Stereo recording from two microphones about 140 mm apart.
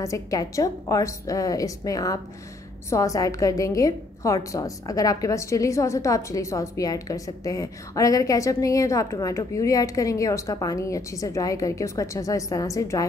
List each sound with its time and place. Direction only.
0.0 s a woman's voice: 25° left (ahead or behind)